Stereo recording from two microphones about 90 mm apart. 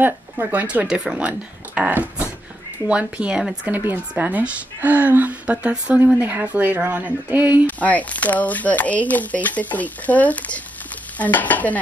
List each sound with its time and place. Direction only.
0.0 s a woman's voice: 20° right (ahead or behind)
7.6 s speech: 15° left (ahead or behind)